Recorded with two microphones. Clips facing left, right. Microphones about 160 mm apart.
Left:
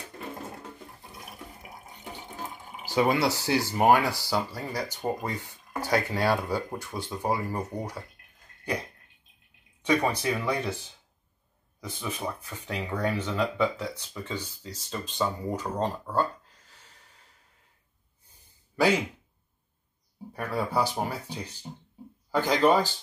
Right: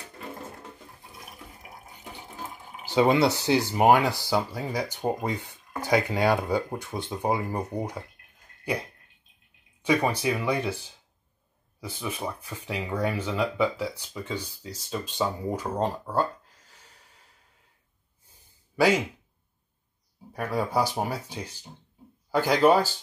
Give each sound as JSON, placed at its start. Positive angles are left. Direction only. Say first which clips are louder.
{"t": 2.9, "sound": "speech", "louder": "right 3 dB", "side_deg": -25}
{"t": 9.8, "sound": "speech", "louder": "right 1 dB", "side_deg": -10}
{"t": 11.8, "sound": "speech", "louder": "right 1 dB", "side_deg": -10}
{"t": 20.3, "sound": "speech", "louder": "right 2 dB", "side_deg": -10}